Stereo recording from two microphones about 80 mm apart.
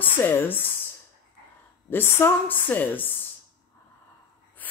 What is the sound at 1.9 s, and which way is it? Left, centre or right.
A woman's voice, left.